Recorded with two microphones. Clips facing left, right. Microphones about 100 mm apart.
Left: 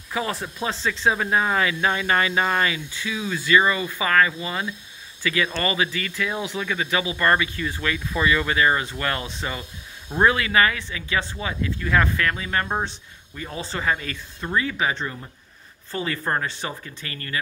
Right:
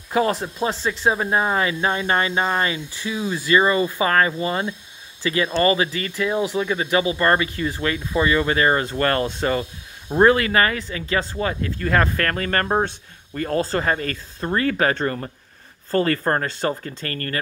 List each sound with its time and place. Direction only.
0.3 s speech: 25° right (ahead or behind)
6.1 s speech: 20° right (ahead or behind); by 14.6 s 45° right (ahead or behind)
14.6 s speech: 55° right (ahead or behind)